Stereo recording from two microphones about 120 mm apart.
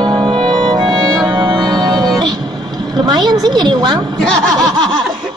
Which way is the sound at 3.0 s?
35° right (ahead or behind).